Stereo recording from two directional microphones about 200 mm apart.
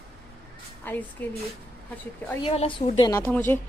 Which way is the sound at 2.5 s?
30° left (ahead or behind).